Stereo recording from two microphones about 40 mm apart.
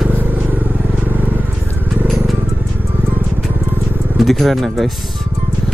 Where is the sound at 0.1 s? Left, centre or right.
Right.